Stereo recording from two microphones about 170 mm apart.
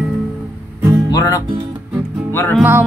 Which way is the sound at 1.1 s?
20° left (ahead or behind).